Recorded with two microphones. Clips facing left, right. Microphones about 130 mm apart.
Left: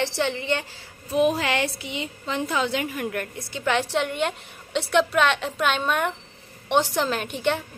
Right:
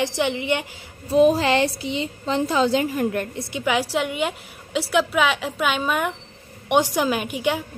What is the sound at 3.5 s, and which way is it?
A woman's voice, 10° right (ahead or behind).